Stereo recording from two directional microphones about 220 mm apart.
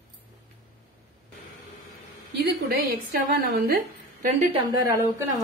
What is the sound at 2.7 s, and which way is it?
A woman's voice, 45° right (ahead or behind).